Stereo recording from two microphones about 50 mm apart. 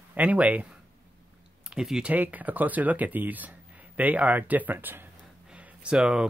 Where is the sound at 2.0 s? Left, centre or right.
Right.